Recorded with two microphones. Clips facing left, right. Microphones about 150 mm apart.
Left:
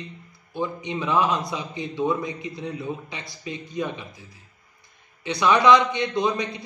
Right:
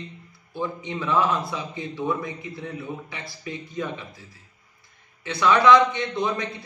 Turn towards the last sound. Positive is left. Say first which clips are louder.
# left 2 dB
turn(degrees=15)  # may be behind; listen again after turning